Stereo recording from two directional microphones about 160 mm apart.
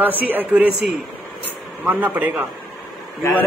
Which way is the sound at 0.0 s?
10° right (ahead or behind).